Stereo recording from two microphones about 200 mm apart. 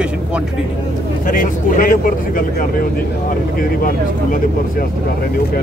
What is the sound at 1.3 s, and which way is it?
Speech, 45° left (ahead or behind).